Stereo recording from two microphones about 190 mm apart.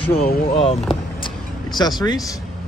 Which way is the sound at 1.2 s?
20° left (ahead or behind).